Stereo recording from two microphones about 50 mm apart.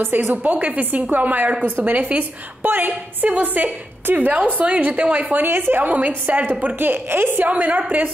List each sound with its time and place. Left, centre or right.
0.0 s a woman's voice: right
5.5 s a woman's voice: right
7.4 s a woman's voice: right